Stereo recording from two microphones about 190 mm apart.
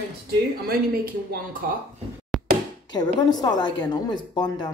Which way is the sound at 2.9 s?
20° left (ahead or behind).